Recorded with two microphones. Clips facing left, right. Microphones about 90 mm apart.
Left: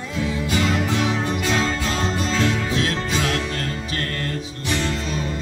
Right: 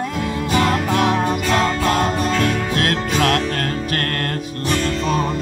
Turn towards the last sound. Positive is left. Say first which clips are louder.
# right 5 dB
turn(degrees=-55)  # may be behind; listen again after turning